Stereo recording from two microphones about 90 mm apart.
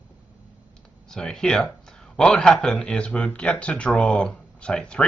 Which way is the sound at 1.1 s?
5° left (ahead or behind).